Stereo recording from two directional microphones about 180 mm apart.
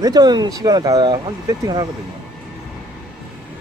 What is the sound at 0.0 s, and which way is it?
Speech, 20° right (ahead or behind).